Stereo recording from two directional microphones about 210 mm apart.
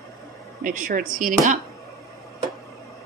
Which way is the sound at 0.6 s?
40° right (ahead or behind).